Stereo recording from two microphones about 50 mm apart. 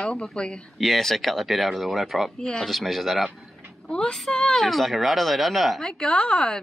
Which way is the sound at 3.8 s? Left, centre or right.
Centre.